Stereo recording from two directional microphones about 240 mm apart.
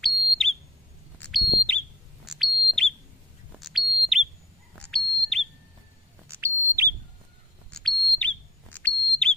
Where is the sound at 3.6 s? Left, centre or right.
Centre.